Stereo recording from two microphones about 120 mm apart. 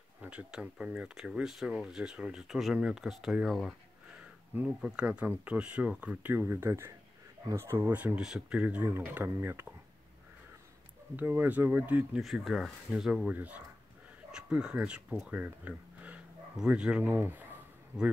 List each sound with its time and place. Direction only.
0.2 s speech: 10° right (ahead or behind)
11.1 s speech: 15° right (ahead or behind)
12.2 s speech: centre (ahead or behind); by 17.5 s 15° right (ahead or behind)